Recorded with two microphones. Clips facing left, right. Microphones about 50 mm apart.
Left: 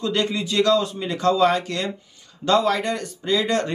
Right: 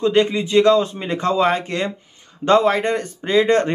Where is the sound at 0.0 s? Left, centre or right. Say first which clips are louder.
Right 7 dB; right.